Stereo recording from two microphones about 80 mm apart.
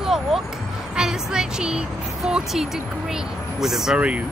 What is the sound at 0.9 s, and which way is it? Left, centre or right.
Speech, centre.